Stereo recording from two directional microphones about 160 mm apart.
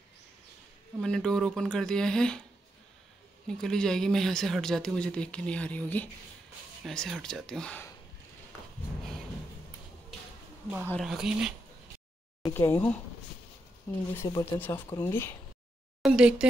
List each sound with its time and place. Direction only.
1.0 s speech: 5° left (ahead or behind)
3.4 s speech: 5° left (ahead or behind)
11.0 s speech: 5° right (ahead or behind)
12.4 s speech: 15° left (ahead or behind)
14.1 s speech: 15° left (ahead or behind)
16.0 s speech: 5° right (ahead or behind)